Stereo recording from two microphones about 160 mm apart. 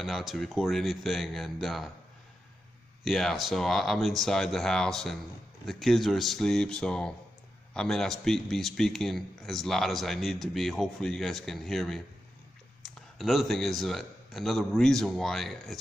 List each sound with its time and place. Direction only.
0.0 s a man's voice: centre (ahead or behind)
3.0 s a man's voice: centre (ahead or behind)